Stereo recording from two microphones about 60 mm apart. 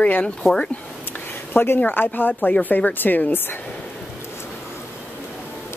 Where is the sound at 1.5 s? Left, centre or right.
Left.